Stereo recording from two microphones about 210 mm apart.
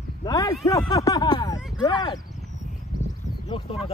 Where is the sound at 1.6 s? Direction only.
Centre (ahead or behind).